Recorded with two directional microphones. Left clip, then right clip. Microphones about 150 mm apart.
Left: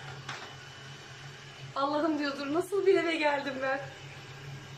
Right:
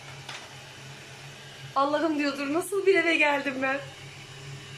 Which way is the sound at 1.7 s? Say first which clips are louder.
Right 4 dB; 5° right (ahead or behind).